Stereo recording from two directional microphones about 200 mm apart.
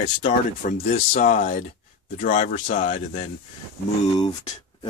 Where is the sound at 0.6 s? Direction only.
45° left (ahead or behind).